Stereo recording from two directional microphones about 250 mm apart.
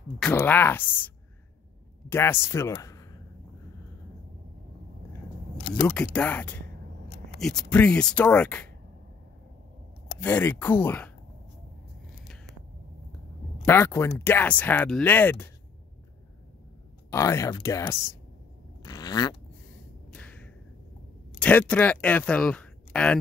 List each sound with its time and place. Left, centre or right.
0.2 s speech: centre
5.8 s speech: centre
10.2 s speech: centre
13.7 s speech: centre
17.1 s speech: centre
18.8 s zipper: centre
20.1 s a sound: centre
21.4 s speech: centre